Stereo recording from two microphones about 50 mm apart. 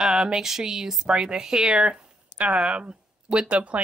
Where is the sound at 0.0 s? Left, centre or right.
Centre.